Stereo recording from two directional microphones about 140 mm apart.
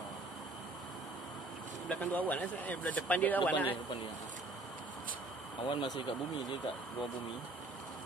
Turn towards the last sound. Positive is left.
turn(degrees=30)  # may be behind; listen again after turning